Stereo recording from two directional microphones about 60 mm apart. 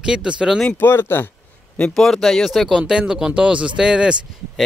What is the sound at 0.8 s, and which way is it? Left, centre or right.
Speech, left.